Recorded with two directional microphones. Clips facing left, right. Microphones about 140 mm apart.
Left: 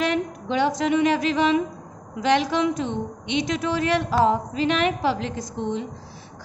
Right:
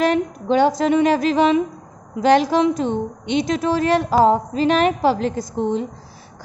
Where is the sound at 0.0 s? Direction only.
40° right (ahead or behind).